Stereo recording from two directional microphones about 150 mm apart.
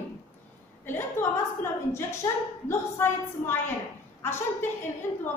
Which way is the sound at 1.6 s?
15° left (ahead or behind).